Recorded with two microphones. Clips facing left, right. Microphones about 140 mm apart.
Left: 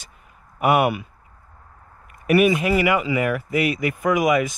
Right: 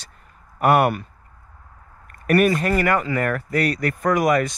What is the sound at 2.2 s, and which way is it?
Speech, 5° left (ahead or behind).